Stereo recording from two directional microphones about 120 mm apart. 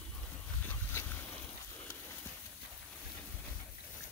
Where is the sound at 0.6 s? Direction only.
15° left (ahead or behind).